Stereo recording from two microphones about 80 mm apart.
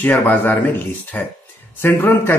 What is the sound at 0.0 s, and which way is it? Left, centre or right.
Speech, left.